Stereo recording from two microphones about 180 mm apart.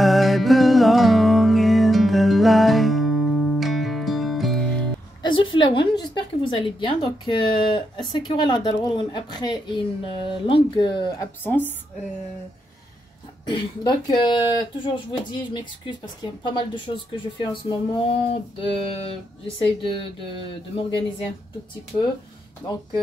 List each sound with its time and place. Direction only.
0.0 s music: centre (ahead or behind)
5.2 s a sound: 25° left (ahead or behind)
5.6 s a woman's voice: 25° left (ahead or behind)
13.5 s a woman's voice: 25° left (ahead or behind)
15.5 s a woman's voice: 25° left (ahead or behind)